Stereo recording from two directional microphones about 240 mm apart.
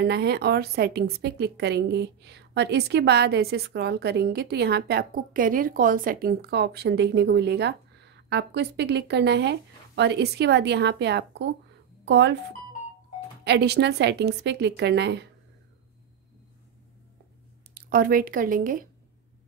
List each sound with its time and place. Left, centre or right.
0.0 s a woman's voice: right
17.7 s speech: right